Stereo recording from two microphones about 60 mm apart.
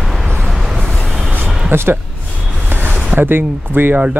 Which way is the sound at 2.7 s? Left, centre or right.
Right.